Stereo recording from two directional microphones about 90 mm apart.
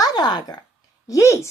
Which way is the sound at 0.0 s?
50° left (ahead or behind).